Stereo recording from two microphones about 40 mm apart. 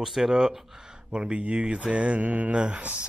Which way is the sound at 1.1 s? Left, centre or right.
Right.